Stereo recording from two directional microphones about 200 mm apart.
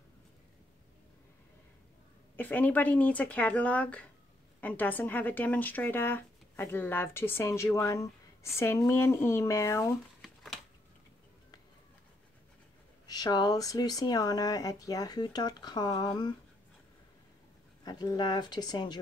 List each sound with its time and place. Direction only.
2.3 s speech: 10° left (ahead or behind)
10.2 s a sound: centre (ahead or behind)
13.0 s speech: 20° left (ahead or behind)
17.8 s speech: 20° left (ahead or behind)